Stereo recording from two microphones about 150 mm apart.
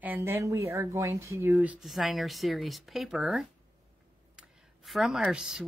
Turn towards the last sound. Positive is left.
turn(degrees=-5)  # may be behind; listen again after turning